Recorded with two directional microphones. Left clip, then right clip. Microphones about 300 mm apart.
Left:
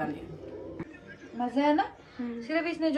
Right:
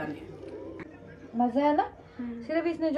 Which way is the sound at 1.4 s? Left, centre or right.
Right.